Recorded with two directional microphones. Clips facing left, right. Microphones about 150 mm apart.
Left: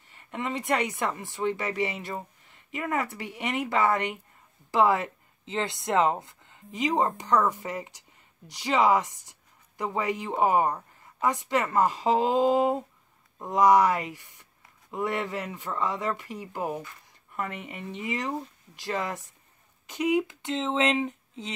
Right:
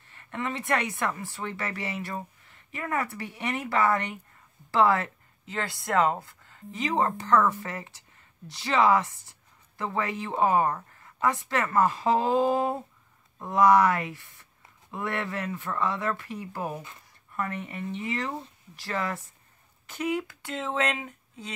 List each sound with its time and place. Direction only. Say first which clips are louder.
0.1 s a woman's voice: left 1 dB; 15° left (ahead or behind)